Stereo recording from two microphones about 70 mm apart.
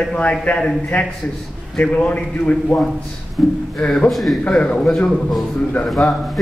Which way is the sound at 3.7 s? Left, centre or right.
Centre.